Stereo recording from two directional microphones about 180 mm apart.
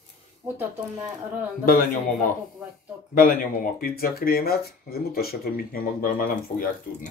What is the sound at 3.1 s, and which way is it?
Speech, 50° left (ahead or behind).